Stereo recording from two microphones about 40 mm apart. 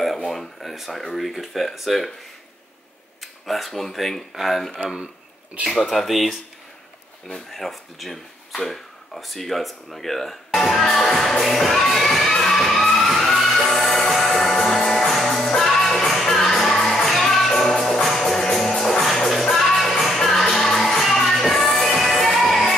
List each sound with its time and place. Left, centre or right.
0.3 s speech: centre
3.2 s a sound: centre
3.8 s speech: centre
7.5 s speech: centre
11.5 s music: centre